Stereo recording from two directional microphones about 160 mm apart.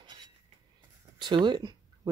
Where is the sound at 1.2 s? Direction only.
30° right (ahead or behind).